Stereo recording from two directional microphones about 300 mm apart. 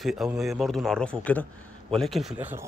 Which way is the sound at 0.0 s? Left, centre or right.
Centre.